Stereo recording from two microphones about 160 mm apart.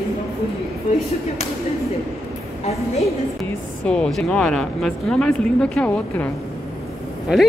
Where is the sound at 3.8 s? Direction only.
5° left (ahead or behind).